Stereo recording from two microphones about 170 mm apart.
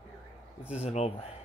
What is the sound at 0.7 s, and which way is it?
Speech, 40° left (ahead or behind).